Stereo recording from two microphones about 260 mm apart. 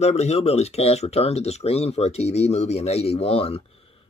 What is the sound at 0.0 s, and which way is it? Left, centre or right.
Speech, left.